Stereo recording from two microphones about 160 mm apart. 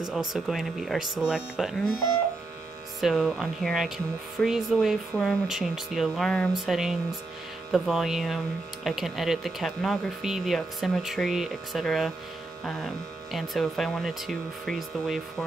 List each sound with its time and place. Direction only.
0.1 s speech: centre (ahead or behind)
3.0 s speech: centre (ahead or behind)